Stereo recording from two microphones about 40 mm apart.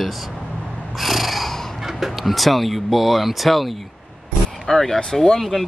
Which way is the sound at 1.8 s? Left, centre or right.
Centre.